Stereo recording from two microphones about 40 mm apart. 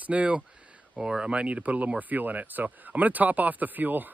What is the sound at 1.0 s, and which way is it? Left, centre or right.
Speech, right.